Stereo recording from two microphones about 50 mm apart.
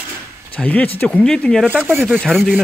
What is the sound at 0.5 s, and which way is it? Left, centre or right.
Speech, left.